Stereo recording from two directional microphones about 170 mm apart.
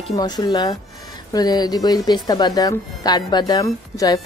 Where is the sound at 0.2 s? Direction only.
25° left (ahead or behind).